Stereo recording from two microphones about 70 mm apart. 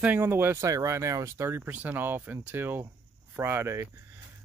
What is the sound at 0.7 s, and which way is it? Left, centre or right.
Speech, right.